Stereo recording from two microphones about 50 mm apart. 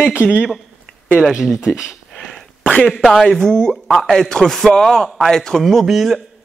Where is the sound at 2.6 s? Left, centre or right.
Centre.